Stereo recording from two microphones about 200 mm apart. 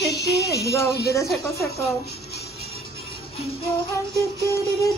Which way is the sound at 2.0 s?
55° left (ahead or behind).